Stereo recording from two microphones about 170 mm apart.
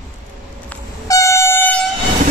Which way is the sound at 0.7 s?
10° left (ahead or behind).